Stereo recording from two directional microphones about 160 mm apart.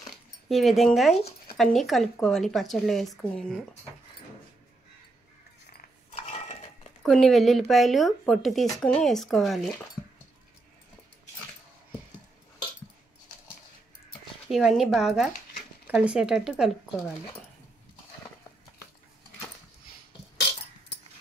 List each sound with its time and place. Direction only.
0.5 s a woman's voice: centre (ahead or behind)
6.1 s cutlery: 40° left (ahead or behind)
7.0 s a woman's voice: centre (ahead or behind)
14.5 s a woman's voice: centre (ahead or behind)